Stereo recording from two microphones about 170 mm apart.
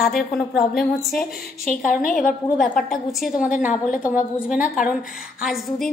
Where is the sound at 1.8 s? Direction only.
55° left (ahead or behind).